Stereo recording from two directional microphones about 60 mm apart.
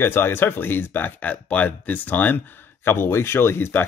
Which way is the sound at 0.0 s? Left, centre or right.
Left.